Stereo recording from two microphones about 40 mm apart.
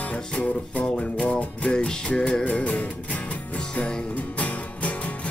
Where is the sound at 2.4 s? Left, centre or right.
Left.